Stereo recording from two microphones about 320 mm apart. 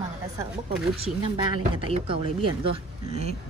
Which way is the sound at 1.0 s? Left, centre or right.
Centre.